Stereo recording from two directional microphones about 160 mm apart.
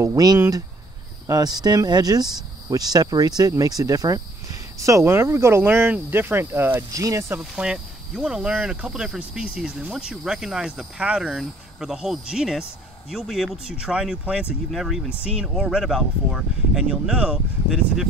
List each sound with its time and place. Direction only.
0.0 s speech: 20° right (ahead or behind); by 18.0 s 5° right (ahead or behind)